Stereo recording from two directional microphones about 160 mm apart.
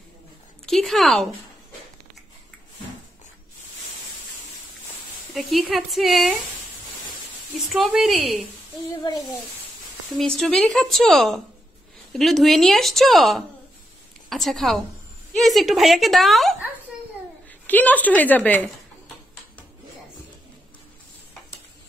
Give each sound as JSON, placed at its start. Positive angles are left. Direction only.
{"t": 0.7, "sound": "speech", "side_deg": 0}
{"t": 5.3, "sound": "a woman's voice", "side_deg": 0}
{"t": 7.7, "sound": "a woman's voice", "side_deg": 0}
{"t": 9.0, "sound": "speech", "side_deg": 25}
{"t": 10.1, "sound": "a woman's voice", "side_deg": 5}
{"t": 17.6, "sound": "a woman's voice", "side_deg": 10}